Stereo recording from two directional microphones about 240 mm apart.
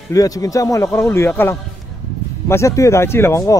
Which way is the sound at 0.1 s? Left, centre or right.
Centre.